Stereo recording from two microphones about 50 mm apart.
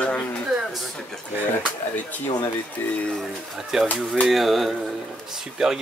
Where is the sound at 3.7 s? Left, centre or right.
Centre.